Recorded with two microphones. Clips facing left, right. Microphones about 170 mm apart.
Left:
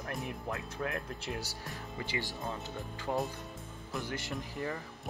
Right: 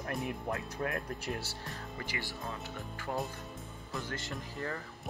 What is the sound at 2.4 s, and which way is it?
Speech, centre (ahead or behind).